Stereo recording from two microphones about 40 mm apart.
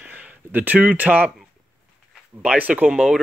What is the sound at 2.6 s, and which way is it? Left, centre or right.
Speech, right.